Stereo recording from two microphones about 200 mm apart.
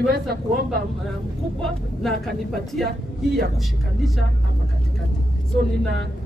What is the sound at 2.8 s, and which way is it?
Speech, 50° right (ahead or behind).